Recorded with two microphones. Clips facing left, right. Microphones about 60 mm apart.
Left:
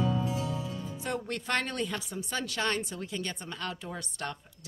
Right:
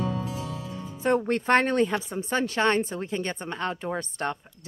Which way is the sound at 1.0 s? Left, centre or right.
Right.